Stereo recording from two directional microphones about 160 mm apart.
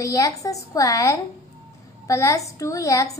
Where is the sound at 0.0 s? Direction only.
20° left (ahead or behind).